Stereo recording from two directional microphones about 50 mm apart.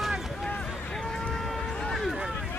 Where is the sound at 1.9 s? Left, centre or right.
Centre.